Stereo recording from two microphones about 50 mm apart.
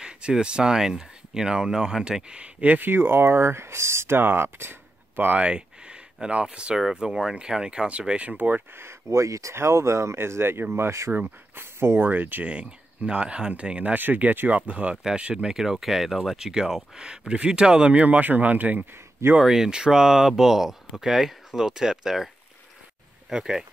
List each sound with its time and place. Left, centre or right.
0.0 s speech: centre
2.9 s speech: right
4.2 s speech: right
5.2 s speech: right
6.2 s speech: centre
8.2 s speech: right
8.7 s speech: right
12.0 s speech: right
12.4 s speech: right
13.9 s speech: right
14.5 s speech: right
15.4 s speech: centre; by 18.9 s right
19.4 s speech: centre
23.3 s speech: centre